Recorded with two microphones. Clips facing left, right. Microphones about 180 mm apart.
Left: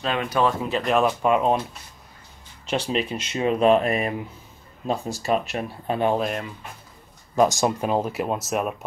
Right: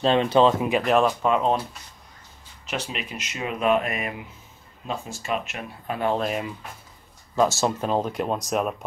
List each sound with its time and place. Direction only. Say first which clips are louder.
0.0 s speech: right 5 dB; 25° right (ahead or behind)
0.8 s speech: even; centre (ahead or behind)
1.2 s speech: left 2 dB; 10° left (ahead or behind)
2.6 s speech: left 7 dB; 30° left (ahead or behind)
6.1 s speech: left 1 dB; centre (ahead or behind)
7.3 s speech: left 2 dB; 15° left (ahead or behind)